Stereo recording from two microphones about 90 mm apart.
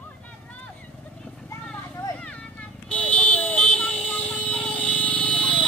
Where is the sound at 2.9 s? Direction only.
15° left (ahead or behind).